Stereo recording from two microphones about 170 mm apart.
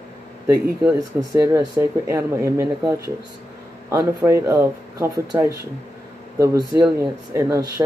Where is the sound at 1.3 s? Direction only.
20° right (ahead or behind).